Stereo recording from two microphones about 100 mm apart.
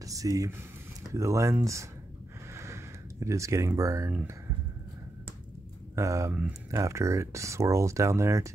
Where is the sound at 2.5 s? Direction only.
30° right (ahead or behind).